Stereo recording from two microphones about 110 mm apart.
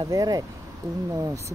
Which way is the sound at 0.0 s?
35° right (ahead or behind).